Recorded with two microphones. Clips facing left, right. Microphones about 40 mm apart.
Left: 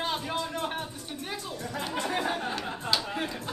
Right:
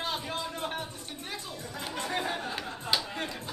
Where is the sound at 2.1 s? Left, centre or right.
Centre.